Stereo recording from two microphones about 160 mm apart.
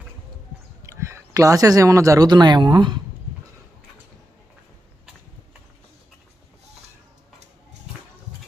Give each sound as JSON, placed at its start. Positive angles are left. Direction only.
{"t": 0.8, "sound": "speech", "side_deg": -15}